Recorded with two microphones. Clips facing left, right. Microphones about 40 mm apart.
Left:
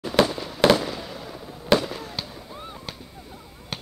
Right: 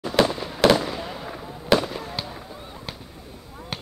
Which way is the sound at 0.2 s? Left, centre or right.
Centre.